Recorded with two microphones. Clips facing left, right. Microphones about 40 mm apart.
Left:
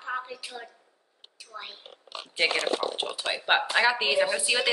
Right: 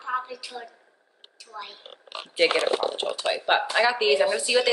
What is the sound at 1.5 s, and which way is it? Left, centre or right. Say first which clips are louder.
Speech: right 2 dB; centre.